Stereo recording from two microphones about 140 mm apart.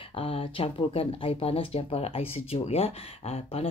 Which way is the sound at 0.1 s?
40° left (ahead or behind).